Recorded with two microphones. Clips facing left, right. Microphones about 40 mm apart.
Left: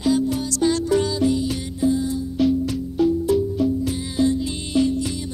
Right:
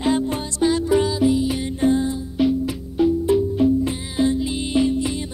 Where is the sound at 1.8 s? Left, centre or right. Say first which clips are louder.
Right 2 dB; right.